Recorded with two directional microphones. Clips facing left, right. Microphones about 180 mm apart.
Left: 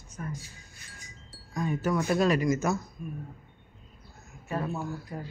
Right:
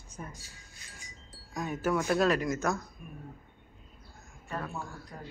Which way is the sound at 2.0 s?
Centre (ahead or behind).